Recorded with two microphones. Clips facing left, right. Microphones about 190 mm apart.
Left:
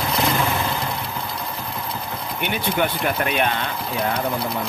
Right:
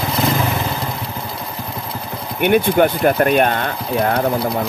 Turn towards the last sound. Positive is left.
turn(degrees=-45)  # may be behind; listen again after turning